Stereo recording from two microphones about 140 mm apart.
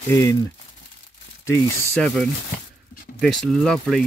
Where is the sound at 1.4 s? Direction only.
20° left (ahead or behind).